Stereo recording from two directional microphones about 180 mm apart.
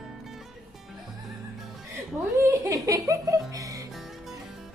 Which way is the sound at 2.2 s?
15° right (ahead or behind).